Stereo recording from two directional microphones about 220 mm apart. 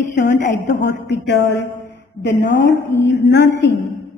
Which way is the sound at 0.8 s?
50° left (ahead or behind).